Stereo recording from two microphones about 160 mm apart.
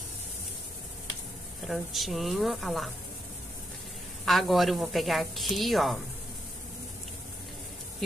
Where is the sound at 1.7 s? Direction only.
Centre (ahead or behind).